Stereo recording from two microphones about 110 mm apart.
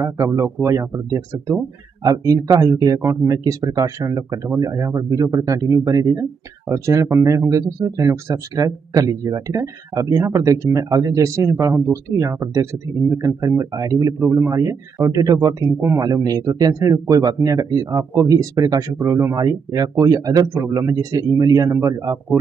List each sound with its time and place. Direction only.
0.0 s speech: 30° right (ahead or behind)